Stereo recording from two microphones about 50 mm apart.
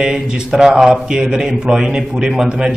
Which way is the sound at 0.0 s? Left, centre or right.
Centre.